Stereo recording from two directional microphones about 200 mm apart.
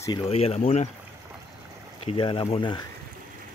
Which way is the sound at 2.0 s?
25° left (ahead or behind).